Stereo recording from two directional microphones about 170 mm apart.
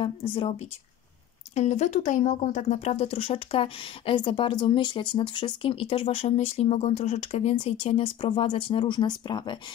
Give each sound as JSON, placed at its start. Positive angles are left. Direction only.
{"t": 0.0, "sound": "speech", "side_deg": 30}
{"t": 1.5, "sound": "speech", "side_deg": 40}